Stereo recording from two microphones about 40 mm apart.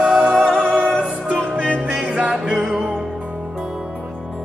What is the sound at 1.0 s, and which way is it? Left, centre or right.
Music, right.